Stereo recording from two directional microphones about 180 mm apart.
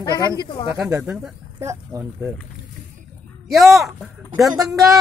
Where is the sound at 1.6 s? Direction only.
15° right (ahead or behind).